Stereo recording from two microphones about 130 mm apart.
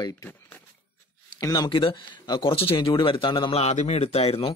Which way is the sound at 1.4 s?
30° left (ahead or behind).